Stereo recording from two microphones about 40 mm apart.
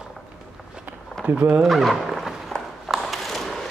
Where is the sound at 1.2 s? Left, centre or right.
Right.